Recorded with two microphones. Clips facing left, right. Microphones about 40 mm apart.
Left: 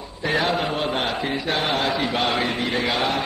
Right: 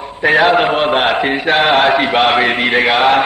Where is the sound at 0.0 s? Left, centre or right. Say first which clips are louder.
Right 11 dB; right.